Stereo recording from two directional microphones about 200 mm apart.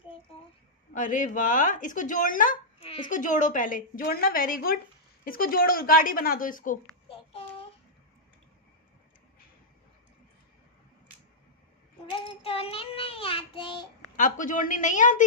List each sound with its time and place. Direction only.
0.9 s speech: 40° left (ahead or behind)
2.8 s speech: 30° left (ahead or behind)
3.1 s a woman's voice: 40° left (ahead or behind)
12.1 s child singing: 30° left (ahead or behind)
14.1 s speech: 40° left (ahead or behind)